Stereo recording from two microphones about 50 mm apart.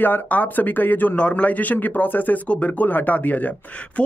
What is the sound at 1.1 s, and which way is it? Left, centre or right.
Speech, left.